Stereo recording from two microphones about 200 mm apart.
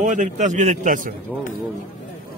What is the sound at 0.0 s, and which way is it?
A man's voice, 40° right (ahead or behind).